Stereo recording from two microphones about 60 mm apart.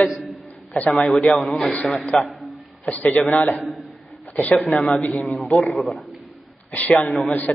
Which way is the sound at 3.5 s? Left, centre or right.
Centre.